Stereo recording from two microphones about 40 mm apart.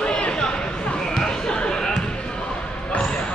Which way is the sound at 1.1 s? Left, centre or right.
Centre.